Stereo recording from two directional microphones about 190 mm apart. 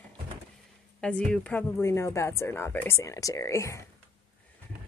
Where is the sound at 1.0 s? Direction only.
5° left (ahead or behind).